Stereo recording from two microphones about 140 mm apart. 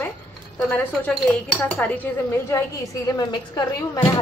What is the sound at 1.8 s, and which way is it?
Speech, 10° left (ahead or behind).